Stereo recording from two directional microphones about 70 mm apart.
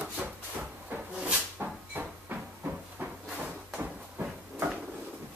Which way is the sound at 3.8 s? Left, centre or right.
Right.